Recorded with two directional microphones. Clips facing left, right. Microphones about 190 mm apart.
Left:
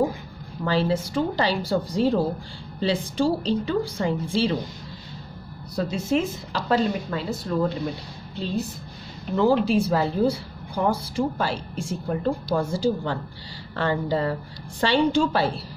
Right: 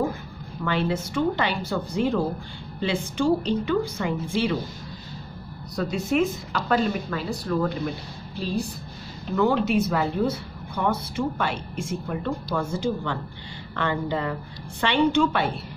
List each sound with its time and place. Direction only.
0.7 s speech: 30° left (ahead or behind)
5.8 s speech: 25° left (ahead or behind)